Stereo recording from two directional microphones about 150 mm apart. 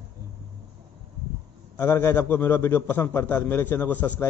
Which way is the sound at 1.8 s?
20° left (ahead or behind).